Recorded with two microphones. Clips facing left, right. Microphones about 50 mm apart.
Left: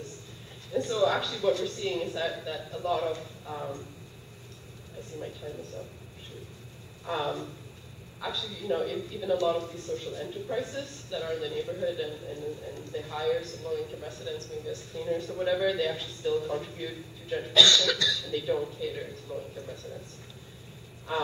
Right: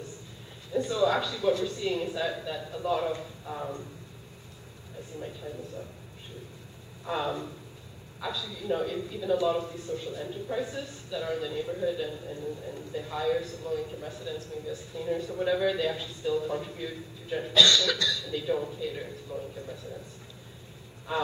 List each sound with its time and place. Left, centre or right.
0.7 s a man's voice: centre
5.2 s a man's voice: centre
7.1 s a man's voice: centre
21.1 s speech: centre